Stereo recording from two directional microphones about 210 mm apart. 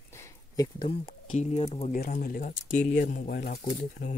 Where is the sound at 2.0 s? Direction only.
40° left (ahead or behind).